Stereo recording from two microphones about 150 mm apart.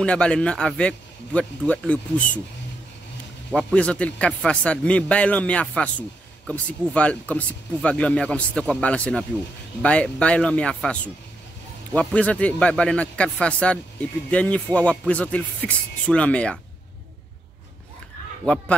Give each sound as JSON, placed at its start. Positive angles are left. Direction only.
{"t": 0.0, "sound": "a man's voice", "side_deg": 5}
{"t": 3.5, "sound": "a man's voice", "side_deg": 5}
{"t": 18.5, "sound": "a man's voice", "side_deg": 5}